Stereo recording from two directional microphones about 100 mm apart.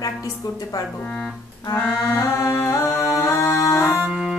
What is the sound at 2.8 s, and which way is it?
Music, centre (ahead or behind).